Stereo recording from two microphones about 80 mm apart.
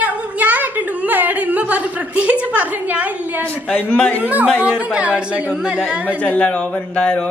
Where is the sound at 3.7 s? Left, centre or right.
Centre.